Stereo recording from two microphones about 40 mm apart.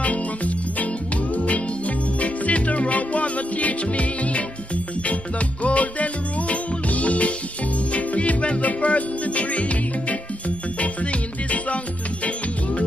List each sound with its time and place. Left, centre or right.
0.0 s music: left